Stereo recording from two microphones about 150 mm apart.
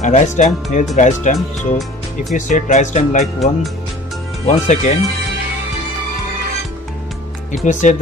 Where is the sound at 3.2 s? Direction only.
Centre (ahead or behind).